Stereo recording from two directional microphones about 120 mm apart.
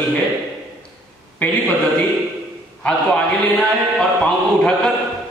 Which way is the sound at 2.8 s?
5° left (ahead or behind).